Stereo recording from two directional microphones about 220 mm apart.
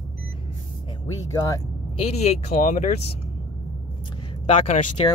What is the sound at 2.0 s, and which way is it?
Speech, 30° left (ahead or behind).